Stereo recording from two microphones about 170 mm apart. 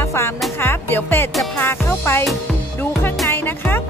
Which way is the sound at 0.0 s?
15° left (ahead or behind).